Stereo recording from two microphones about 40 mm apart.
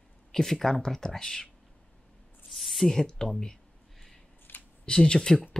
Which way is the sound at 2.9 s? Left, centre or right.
Centre.